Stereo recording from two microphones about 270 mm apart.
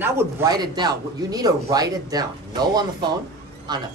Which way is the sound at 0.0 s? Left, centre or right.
Centre.